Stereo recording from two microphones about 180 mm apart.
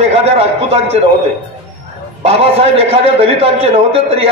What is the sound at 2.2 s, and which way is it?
A man's voice, 35° right (ahead or behind).